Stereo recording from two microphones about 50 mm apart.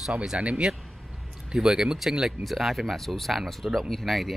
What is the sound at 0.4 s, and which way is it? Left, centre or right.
Speech, right.